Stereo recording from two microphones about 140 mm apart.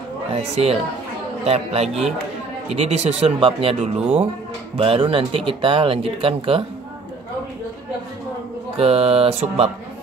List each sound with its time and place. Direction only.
0.3 s speech: 45° right (ahead or behind)
8.7 s speech: 45° right (ahead or behind)